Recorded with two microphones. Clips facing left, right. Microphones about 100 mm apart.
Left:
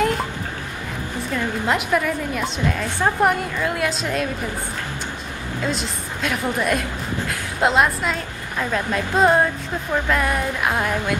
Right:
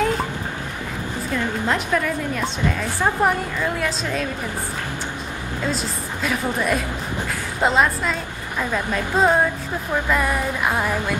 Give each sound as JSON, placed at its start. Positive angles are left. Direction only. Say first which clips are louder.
{"t": 1.3, "sound": "a woman's voice", "louder": "left 1 dB", "side_deg": 5}
{"t": 5.7, "sound": "a woman's voice", "louder": "right 2 dB", "side_deg": 0}